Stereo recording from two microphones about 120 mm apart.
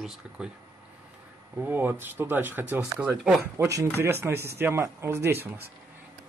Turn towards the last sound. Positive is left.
turn(degrees=-20)  # may be behind; listen again after turning